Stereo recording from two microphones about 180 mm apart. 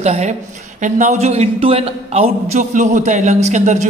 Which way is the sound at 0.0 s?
40° right (ahead or behind).